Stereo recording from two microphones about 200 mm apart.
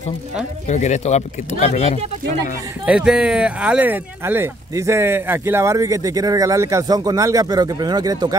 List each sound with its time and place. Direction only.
0.7 s speech: 35° left (ahead or behind)
2.8 s speech: 5° right (ahead or behind)